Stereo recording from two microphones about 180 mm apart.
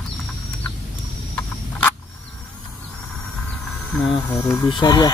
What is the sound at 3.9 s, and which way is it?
Speech, 10° left (ahead or behind).